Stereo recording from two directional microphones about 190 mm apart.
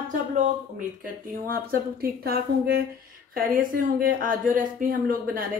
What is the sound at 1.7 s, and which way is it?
A woman's voice, 55° right (ahead or behind).